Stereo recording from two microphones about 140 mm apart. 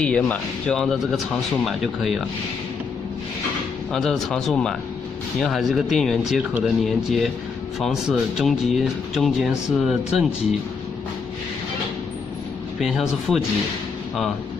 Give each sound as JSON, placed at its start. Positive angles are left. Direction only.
{"t": 0.0, "sound": "speech", "side_deg": 5}
{"t": 3.9, "sound": "speech", "side_deg": 5}
{"t": 12.8, "sound": "speech", "side_deg": -5}